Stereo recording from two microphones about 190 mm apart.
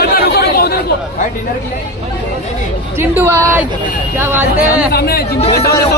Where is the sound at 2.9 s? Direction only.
10° right (ahead or behind).